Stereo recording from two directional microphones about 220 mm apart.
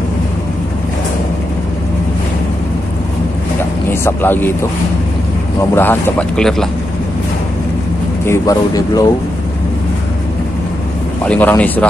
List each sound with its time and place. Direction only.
3.9 s a man's voice: 10° left (ahead or behind)
5.8 s speech: 10° left (ahead or behind)
8.3 s a man's voice: 15° left (ahead or behind)
11.2 s a man's voice: 5° left (ahead or behind)